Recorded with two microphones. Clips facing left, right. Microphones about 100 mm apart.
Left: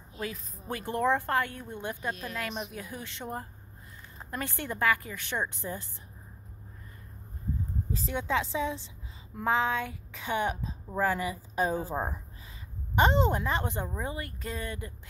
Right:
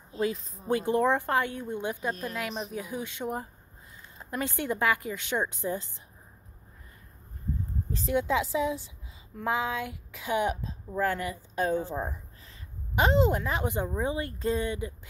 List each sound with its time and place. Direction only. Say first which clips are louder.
0.1 s a woman's voice: right 8 dB; 25° right (ahead or behind)
2.3 s speech: right 2 dB; centre (ahead or behind)
2.7 s a woman's voice: right 5 dB; 15° right (ahead or behind)
7.9 s speech: right 4 dB; centre (ahead or behind)
11.9 s speech: left 1 dB; 40° left (ahead or behind)
12.9 s a woman's voice: right 1 dB; centre (ahead or behind)
14.0 s speech: right 7 dB; 25° right (ahead or behind)